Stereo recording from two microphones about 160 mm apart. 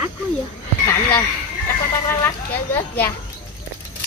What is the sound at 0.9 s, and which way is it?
Speech, 15° left (ahead or behind).